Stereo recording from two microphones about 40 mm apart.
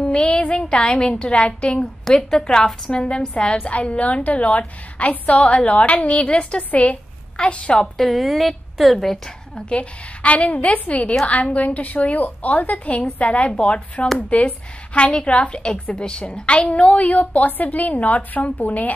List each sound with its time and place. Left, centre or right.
0.0 s a sound: left
1.1 s a woman's voice: left
4.0 s a woman's voice: left
8.1 s a woman's voice: centre
9.7 s a woman's voice: left
14.0 s speech: left
15.0 s a woman's voice: left